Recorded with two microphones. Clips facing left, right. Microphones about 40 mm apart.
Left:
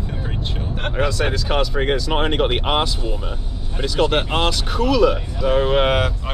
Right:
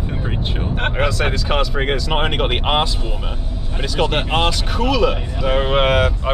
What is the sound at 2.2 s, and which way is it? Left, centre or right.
Speech, right.